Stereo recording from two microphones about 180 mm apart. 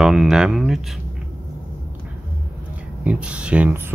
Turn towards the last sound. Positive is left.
turn(degrees=-10)  # may be behind; listen again after turning